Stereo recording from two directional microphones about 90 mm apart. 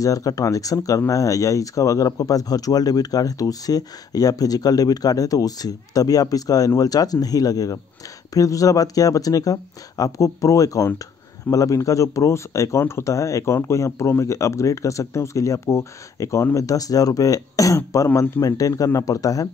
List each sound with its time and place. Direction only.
0.0 s speech: 40° left (ahead or behind)